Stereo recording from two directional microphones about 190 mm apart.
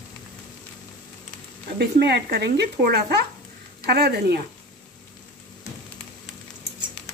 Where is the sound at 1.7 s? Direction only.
60° right (ahead or behind).